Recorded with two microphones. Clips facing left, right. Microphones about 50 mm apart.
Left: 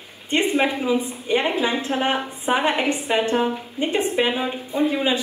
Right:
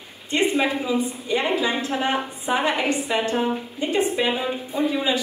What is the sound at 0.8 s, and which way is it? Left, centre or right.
A woman's voice, left.